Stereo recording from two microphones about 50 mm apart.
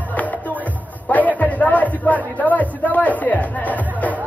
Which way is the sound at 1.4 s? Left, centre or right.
Left.